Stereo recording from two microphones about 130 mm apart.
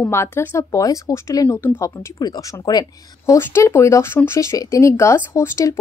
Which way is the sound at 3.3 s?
20° left (ahead or behind).